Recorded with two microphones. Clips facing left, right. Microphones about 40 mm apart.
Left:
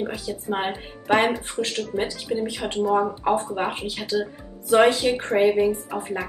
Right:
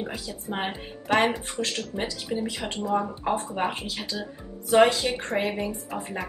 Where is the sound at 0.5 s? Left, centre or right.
Centre.